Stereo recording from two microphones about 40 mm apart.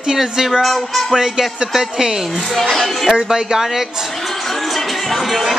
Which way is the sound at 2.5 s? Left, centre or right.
Centre.